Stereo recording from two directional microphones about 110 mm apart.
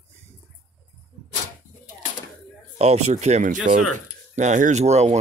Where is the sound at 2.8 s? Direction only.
80° right.